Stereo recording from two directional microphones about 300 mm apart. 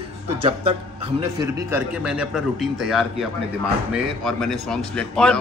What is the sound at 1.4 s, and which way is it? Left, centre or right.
Speech, centre.